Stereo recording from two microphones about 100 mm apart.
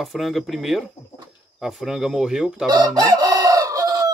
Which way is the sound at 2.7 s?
40° right (ahead or behind).